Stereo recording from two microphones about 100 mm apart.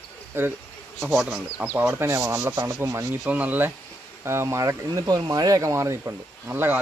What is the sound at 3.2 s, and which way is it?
Speech, 15° right (ahead or behind).